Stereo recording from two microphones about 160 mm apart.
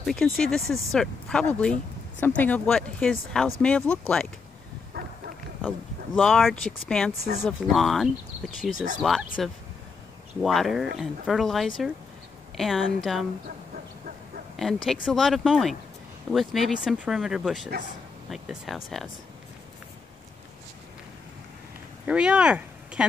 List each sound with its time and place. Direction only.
0.0 s speech: centre (ahead or behind)
4.9 s dog: 75° right (ahead or behind)
6.1 s speech: centre (ahead or behind)
10.4 s speech: centre (ahead or behind)
14.6 s speech: centre (ahead or behind)
22.0 s speech: 5° right (ahead or behind)